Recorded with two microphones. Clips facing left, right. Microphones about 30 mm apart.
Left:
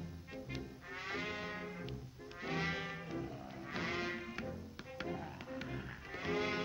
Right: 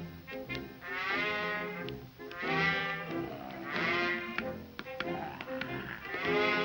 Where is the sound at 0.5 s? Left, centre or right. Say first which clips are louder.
Right 9 dB; right.